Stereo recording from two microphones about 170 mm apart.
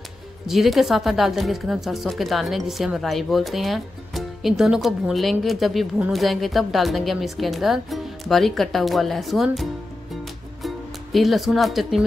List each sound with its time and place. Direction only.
0.5 s speech: centre (ahead or behind)
10.6 s music: centre (ahead or behind)